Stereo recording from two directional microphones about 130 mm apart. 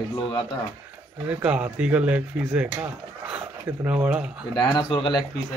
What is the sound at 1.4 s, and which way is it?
Speech, 10° right (ahead or behind).